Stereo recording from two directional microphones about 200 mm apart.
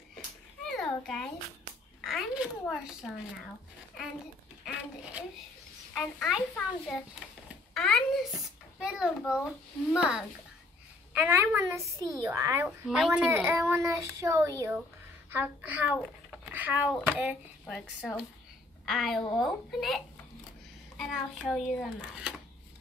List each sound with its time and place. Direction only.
0.7 s a sound: centre (ahead or behind)
2.0 s a child's voice: centre (ahead or behind)
5.9 s a child's voice: centre (ahead or behind)
7.7 s a sound: centre (ahead or behind)
8.7 s a child's voice: 5° right (ahead or behind)
12.6 s a child's voice: centre (ahead or behind)
19.2 s speech: 20° left (ahead or behind)
21.0 s a child's voice: centre (ahead or behind)